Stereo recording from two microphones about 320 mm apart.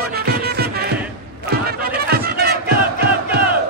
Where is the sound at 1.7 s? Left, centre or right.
Right.